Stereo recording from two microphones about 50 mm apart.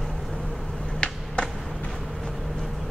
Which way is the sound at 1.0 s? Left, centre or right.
Centre.